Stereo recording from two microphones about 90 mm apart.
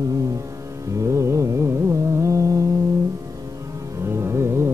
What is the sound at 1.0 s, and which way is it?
Carnatic music, 35° right (ahead or behind).